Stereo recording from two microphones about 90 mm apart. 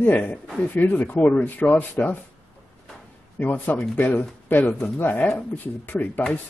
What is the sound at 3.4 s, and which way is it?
Speech, 20° left (ahead or behind).